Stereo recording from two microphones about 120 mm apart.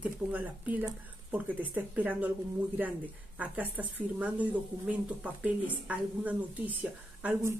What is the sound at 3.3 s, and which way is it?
Speech, 10° right (ahead or behind).